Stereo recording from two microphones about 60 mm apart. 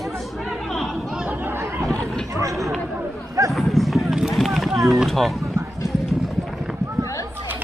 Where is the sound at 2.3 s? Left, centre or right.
Right.